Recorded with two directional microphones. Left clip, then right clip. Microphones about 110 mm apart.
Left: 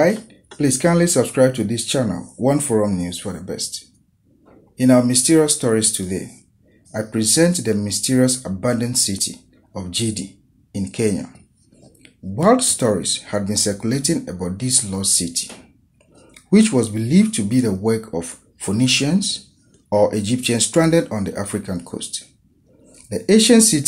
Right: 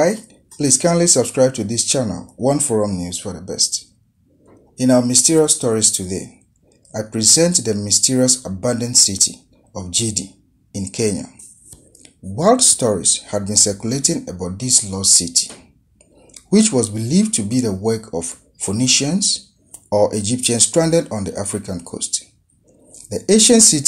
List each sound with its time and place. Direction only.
0.0 s speech: 30° right (ahead or behind)